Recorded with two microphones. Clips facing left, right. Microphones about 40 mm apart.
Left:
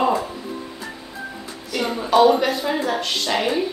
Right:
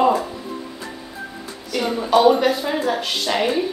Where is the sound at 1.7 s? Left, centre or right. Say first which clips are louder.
Right 2 dB; centre.